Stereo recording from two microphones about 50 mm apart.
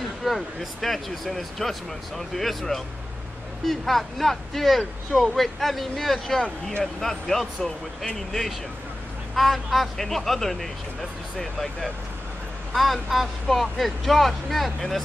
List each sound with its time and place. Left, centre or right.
0.0 s speech: centre